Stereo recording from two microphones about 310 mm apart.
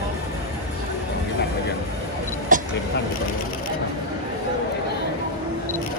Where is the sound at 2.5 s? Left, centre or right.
Right.